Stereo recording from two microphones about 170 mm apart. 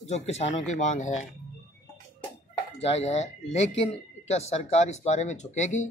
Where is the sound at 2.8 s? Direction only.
40° left (ahead or behind).